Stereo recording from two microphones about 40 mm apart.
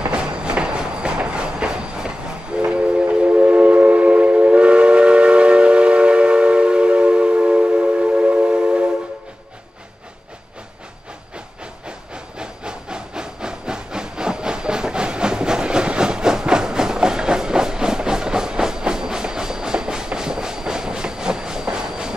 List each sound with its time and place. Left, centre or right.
0.1 s train: right
12.1 s wood: right